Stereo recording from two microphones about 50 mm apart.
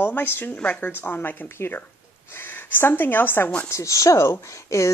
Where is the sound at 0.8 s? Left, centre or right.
Left.